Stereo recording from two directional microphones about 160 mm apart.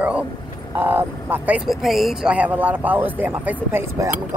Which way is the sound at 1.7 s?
Centre (ahead or behind).